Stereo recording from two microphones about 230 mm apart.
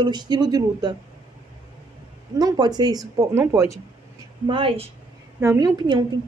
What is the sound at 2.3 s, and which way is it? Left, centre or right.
A woman's voice, centre.